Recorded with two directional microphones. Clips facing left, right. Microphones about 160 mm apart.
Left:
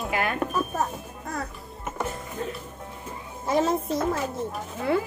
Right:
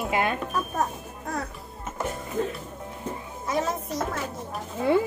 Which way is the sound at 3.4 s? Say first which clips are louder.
Left 4 dB; 25° left (ahead or behind).